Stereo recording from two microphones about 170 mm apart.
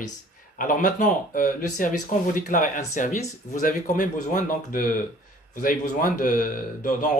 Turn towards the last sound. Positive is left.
turn(degrees=50)  # may be behind; listen again after turning